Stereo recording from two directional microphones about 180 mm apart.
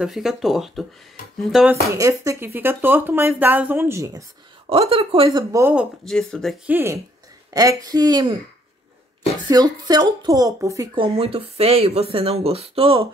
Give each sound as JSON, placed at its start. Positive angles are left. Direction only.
{"t": 0.0, "sound": "speech", "side_deg": 0}
{"t": 2.0, "sound": "speech", "side_deg": -15}
{"t": 4.6, "sound": "speech", "side_deg": -30}
{"t": 5.5, "sound": "speech", "side_deg": -15}
{"t": 6.0, "sound": "speech", "side_deg": 5}
{"t": 6.7, "sound": "speech", "side_deg": -15}
{"t": 9.5, "sound": "speech", "side_deg": -20}
{"t": 11.1, "sound": "speech", "side_deg": -35}